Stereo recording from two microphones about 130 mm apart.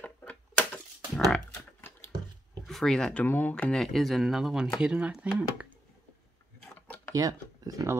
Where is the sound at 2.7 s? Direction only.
5° left (ahead or behind).